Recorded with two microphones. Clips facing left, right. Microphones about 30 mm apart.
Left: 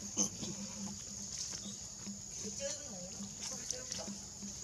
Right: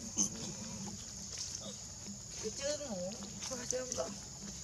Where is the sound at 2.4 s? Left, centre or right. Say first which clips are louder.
Right 5 dB; right.